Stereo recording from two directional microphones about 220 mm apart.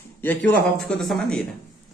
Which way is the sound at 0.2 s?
5° left (ahead or behind).